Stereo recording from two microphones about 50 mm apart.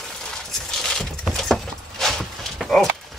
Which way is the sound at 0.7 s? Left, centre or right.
Centre.